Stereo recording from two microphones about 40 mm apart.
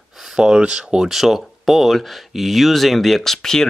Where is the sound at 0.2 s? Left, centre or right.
Centre.